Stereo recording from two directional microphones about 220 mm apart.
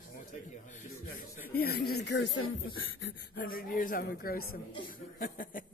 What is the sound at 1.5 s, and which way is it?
Speech, 45° left (ahead or behind).